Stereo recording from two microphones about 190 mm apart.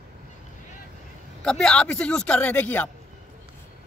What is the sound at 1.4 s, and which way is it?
Speech, 5° left (ahead or behind).